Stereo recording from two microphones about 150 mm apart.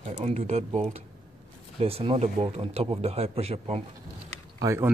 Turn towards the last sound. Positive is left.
turn(degrees=-20)  # may be behind; listen again after turning